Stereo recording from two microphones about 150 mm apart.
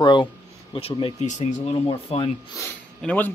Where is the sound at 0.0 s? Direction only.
30° left (ahead or behind).